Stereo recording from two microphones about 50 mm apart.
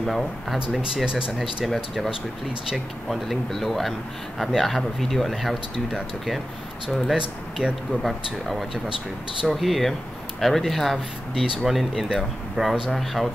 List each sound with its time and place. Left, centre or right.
0.0 s speech: centre
0.7 s speech: centre
7.2 s speech: centre
8.0 s speech: centre